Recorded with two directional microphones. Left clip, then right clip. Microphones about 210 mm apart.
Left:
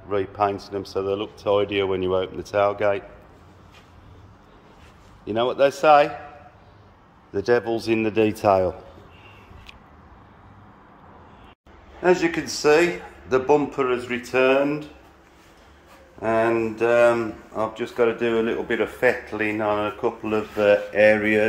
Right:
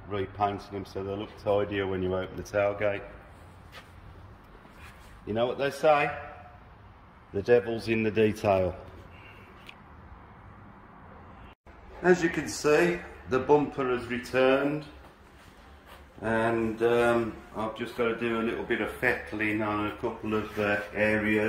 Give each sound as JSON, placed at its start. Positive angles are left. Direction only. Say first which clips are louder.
{"t": 0.1, "sound": "speech", "louder": "left 7 dB", "side_deg": 10}
{"t": 5.2, "sound": "speech", "louder": "left 9 dB", "side_deg": 5}
{"t": 7.3, "sound": "speech", "louder": "left 3 dB", "side_deg": 10}
{"t": 12.0, "sound": "speech", "louder": "left 5 dB", "side_deg": 10}
{"t": 16.2, "sound": "speech", "louder": "left 7 dB", "side_deg": 10}